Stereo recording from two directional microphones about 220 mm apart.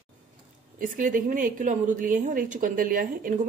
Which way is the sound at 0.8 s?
35° right (ahead or behind).